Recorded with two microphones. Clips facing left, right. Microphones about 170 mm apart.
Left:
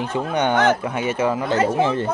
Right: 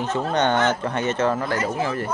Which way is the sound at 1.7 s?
25° left (ahead or behind).